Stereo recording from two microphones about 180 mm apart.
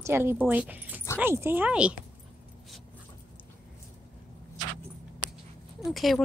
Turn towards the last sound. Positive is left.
turn(degrees=0)  # may be behind; listen again after turning